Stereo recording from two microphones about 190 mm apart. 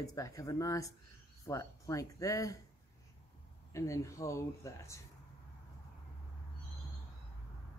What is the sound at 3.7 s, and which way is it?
Speech, 15° left (ahead or behind).